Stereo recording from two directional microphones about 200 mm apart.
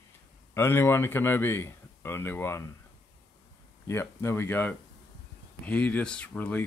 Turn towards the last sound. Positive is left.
turn(degrees=5)  # may be behind; listen again after turning